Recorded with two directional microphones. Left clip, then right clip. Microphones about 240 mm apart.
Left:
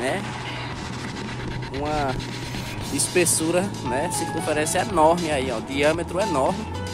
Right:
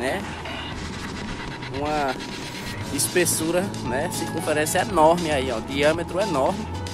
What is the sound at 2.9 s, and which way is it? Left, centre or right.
Speech, centre.